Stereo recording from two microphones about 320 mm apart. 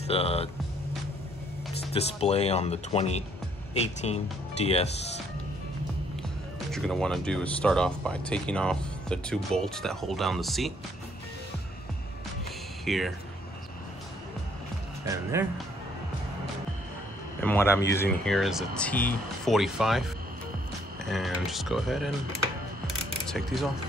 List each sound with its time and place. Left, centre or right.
0.0 s speech: centre
2.0 s speech: centre
6.7 s speech: centre
12.8 s speech: centre
15.0 s speech: centre
17.4 s a man's voice: centre
23.2 s speech: centre